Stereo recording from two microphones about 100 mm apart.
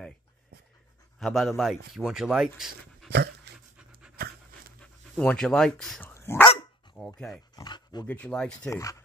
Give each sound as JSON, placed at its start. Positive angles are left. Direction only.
{"t": 1.2, "sound": "speech", "side_deg": 0}
{"t": 5.1, "sound": "speech", "side_deg": 10}
{"t": 6.0, "sound": "speech", "side_deg": 20}
{"t": 7.0, "sound": "pig", "side_deg": 10}
{"t": 7.5, "sound": "dog", "side_deg": 45}
{"t": 8.1, "sound": "speech", "side_deg": 10}
{"t": 8.6, "sound": "speech", "side_deg": 30}